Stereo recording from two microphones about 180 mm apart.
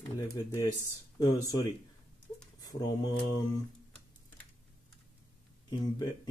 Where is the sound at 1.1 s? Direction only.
20° left (ahead or behind).